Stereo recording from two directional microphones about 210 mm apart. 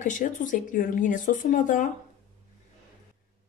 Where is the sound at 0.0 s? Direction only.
35° left (ahead or behind).